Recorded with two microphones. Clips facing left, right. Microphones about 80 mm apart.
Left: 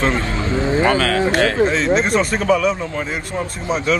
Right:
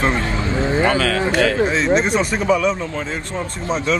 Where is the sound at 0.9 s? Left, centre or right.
Left.